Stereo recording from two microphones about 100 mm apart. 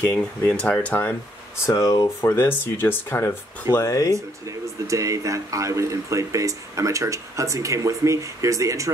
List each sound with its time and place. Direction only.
0.1 s speech: 10° left (ahead or behind)
1.7 s speech: 35° left (ahead or behind)
4.1 s speech: 30° right (ahead or behind)